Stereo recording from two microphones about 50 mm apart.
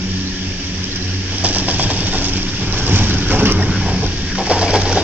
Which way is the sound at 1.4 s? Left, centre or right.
Right.